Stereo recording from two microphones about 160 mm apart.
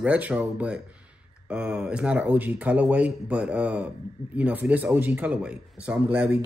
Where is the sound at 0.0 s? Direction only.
10° right (ahead or behind).